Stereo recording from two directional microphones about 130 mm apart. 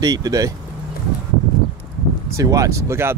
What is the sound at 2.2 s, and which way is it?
Speech, 25° right (ahead or behind).